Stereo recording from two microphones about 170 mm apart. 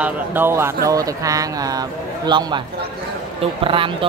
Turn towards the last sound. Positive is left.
turn(degrees=-30)  # may be behind; listen again after turning